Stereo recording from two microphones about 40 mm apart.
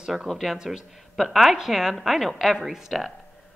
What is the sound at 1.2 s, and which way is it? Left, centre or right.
A woman's voice, centre.